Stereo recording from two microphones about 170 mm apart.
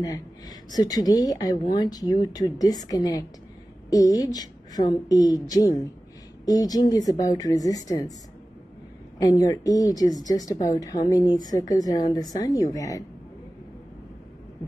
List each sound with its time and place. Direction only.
0.0 s speech: 20° left (ahead or behind)
9.4 s speech: 20° left (ahead or behind)